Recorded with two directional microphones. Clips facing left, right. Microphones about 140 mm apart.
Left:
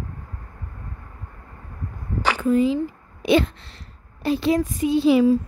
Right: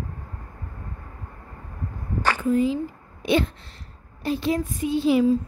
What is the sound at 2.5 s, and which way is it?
A woman's voice, 90° left.